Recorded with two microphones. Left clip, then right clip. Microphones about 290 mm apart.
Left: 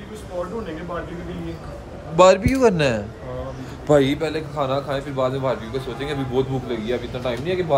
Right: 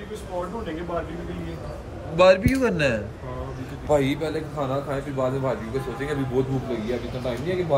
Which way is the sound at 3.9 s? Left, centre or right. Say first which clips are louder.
Left 5 dB; left.